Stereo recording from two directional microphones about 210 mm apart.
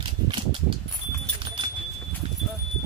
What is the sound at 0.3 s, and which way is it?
Mechanisms, 25° right (ahead or behind).